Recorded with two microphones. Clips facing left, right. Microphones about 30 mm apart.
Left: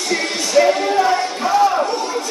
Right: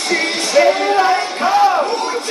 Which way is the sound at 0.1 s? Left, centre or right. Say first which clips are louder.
Right 2 dB; right.